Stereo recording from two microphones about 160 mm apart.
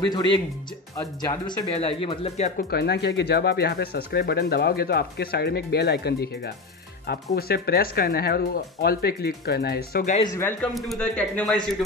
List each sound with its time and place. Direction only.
0.0 s speech: 30° left (ahead or behind)
1.8 s speech: 40° left (ahead or behind)
2.7 s speech: 90° left
10.2 s speech: 20° left (ahead or behind)
10.6 s a man's voice: 5° left (ahead or behind)